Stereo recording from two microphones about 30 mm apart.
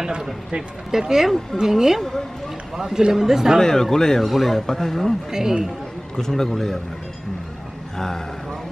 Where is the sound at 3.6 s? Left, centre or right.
Centre.